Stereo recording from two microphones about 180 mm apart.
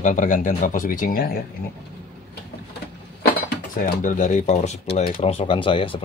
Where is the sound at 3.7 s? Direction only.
45° left (ahead or behind).